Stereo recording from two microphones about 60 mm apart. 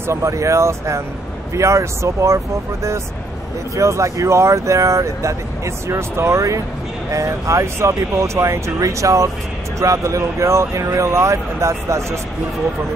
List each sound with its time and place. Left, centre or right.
0.0 s speech: right